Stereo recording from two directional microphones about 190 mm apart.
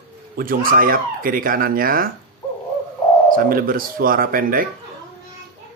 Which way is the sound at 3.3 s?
50° right (ahead or behind).